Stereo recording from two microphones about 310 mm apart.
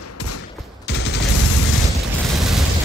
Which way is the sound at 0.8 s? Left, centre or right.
Left.